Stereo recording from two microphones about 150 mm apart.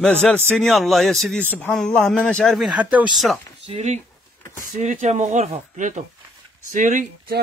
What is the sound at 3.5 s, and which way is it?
Speech, 45° right (ahead or behind).